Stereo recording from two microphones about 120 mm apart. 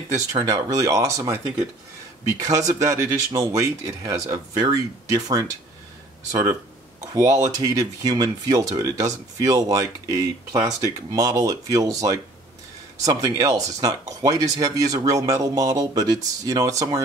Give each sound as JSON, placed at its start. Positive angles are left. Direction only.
{"t": 0.1, "sound": "speech", "side_deg": -30}
{"t": 7.2, "sound": "speech", "side_deg": -30}